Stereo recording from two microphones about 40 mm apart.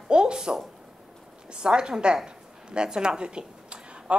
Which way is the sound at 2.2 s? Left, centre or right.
Right.